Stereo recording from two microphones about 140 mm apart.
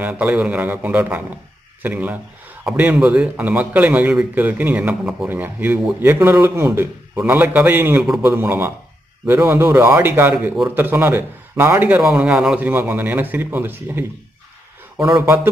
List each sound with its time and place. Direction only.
0.0 s a man's voice: 10° right (ahead or behind)
15.0 s speech: 5° right (ahead or behind)
15.2 s a man's voice: 15° right (ahead or behind)